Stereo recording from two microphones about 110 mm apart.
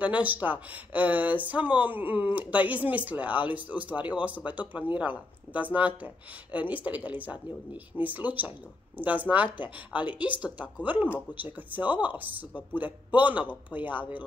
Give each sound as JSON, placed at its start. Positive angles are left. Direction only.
{"t": 0.0, "sound": "speech", "side_deg": -15}